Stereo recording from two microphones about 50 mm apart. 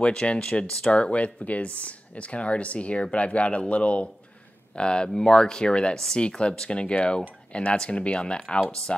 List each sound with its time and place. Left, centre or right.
0.0 s speech: centre